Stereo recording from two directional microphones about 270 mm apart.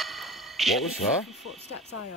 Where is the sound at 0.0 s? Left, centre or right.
Centre.